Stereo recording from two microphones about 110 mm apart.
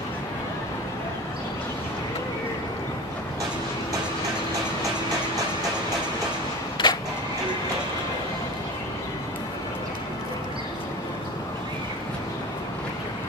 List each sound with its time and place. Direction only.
6.8 s music: 45° left (ahead or behind)